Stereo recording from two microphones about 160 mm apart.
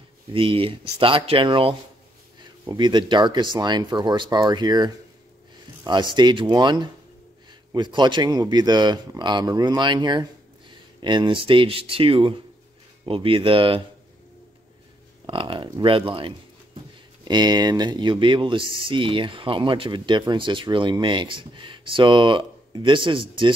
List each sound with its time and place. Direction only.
0.3 s speech: 35° right (ahead or behind)
15.2 s speech: 30° right (ahead or behind)